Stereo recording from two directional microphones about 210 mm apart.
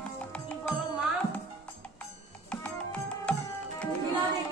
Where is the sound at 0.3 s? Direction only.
5° left (ahead or behind).